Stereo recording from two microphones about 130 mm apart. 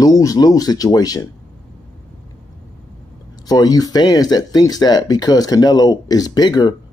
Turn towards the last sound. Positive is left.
turn(degrees=30)  # may be behind; listen again after turning